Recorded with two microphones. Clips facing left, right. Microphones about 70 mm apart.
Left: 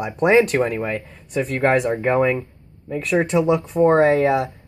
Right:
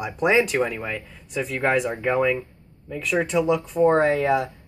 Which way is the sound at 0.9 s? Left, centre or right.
Left.